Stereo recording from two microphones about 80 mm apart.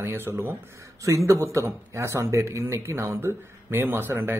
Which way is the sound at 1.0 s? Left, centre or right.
Right.